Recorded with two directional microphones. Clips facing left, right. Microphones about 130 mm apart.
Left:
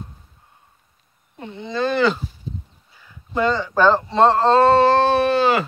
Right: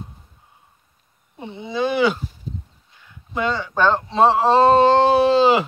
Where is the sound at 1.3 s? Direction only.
15° right (ahead or behind).